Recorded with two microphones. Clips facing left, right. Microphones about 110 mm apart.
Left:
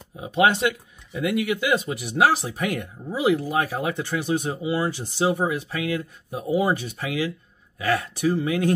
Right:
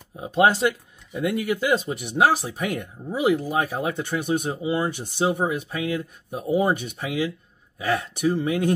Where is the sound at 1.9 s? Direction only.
5° left (ahead or behind).